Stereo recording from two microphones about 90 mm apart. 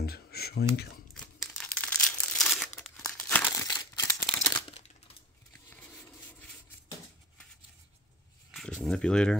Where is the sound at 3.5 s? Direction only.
40° left (ahead or behind).